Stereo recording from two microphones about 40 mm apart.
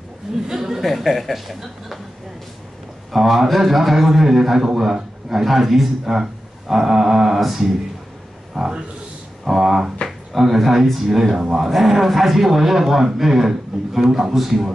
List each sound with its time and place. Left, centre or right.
0.5 s a sound: centre
0.8 s speech: centre
3.1 s speech: centre
8.5 s speech: centre